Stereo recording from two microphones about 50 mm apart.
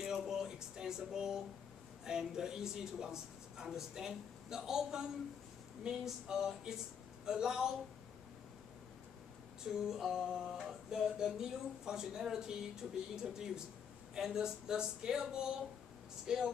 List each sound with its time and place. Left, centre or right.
0.0 s a sound: centre
2.0 s speech: centre
9.7 s speech: centre